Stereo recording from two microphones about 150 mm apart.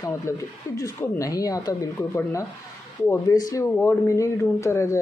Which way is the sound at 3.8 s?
15° left (ahead or behind).